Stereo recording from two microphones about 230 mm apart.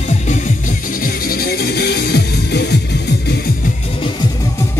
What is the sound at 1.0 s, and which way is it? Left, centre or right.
Music, left.